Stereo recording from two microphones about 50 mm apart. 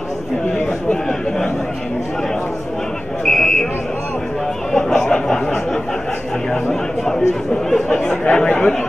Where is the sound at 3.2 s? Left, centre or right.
Centre.